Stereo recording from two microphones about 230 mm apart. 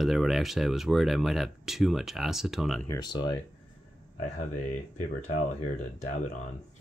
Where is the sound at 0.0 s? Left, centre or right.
Centre.